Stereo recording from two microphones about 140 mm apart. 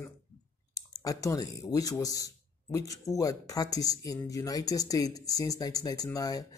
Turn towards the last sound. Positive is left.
turn(degrees=25)  # may be behind; listen again after turning